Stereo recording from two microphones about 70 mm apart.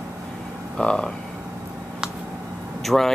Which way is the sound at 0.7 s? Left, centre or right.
Centre.